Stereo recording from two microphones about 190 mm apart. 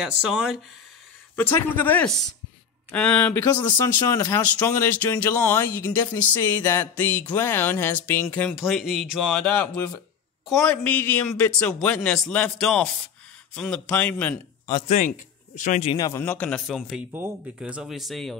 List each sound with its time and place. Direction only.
0.2 s a man's voice: 5° right (ahead or behind)
1.3 s a man's voice: 10° left (ahead or behind)
14.7 s speech: 25° left (ahead or behind)
15.6 s speech: 40° left (ahead or behind)
15.9 s speech: 20° left (ahead or behind)
16.2 s a man's voice: 5° left (ahead or behind)